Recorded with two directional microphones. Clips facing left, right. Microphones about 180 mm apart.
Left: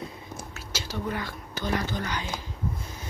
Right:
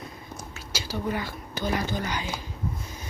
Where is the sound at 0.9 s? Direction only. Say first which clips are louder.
Right 2 dB; 5° right (ahead or behind).